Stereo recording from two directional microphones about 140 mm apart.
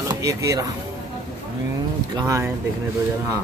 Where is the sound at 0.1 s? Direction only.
25° right (ahead or behind).